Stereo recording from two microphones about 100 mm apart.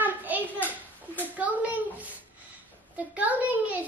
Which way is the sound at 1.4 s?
15° right (ahead or behind).